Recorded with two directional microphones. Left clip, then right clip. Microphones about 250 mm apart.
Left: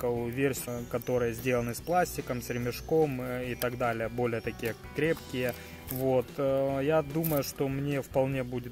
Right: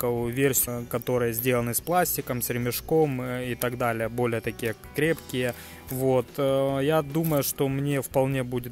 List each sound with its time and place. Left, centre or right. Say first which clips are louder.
0.0 s speech: right 5 dB; right